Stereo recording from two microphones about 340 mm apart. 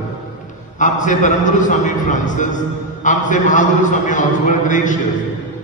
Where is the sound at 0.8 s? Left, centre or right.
Left.